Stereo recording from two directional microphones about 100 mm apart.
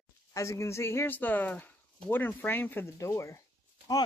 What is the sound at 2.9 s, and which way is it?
Speech, 30° left (ahead or behind).